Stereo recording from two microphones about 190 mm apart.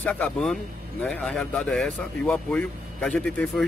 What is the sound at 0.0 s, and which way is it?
Speech, 5° left (ahead or behind).